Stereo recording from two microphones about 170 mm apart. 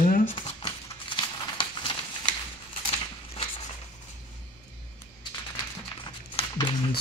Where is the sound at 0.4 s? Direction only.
30° left (ahead or behind).